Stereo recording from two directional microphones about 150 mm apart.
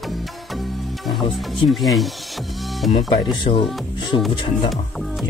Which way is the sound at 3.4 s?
35° left (ahead or behind).